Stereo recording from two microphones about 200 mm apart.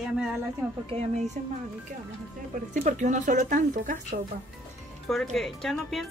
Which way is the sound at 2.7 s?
40° right (ahead or behind).